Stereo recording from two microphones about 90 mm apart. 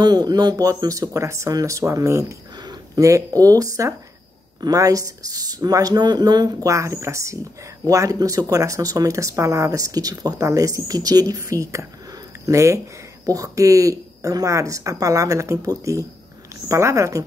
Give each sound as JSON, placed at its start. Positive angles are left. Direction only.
{"t": 0.0, "sound": "a woman's voice", "side_deg": -50}
{"t": 2.5, "sound": "a sound", "side_deg": -50}
{"t": 3.1, "sound": "a woman's voice", "side_deg": -40}